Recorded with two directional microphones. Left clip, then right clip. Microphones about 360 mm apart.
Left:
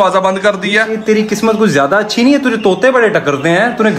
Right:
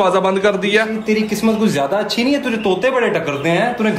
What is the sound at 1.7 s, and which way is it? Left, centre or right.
Speech, left.